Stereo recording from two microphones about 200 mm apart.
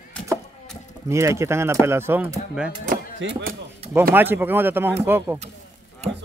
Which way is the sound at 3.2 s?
70° right (ahead or behind).